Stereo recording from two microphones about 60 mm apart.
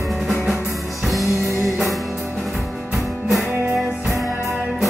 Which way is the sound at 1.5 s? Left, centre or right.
Right.